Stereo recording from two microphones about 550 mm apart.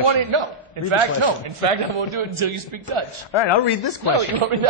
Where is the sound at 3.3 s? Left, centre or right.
Left.